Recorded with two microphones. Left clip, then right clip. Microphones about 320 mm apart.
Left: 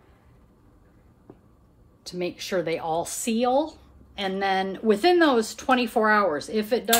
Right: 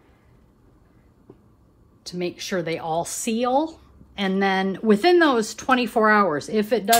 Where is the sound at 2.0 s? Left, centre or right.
Right.